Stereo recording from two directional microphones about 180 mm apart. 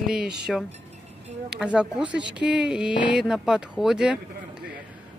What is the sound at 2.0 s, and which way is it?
Speech, 80° right.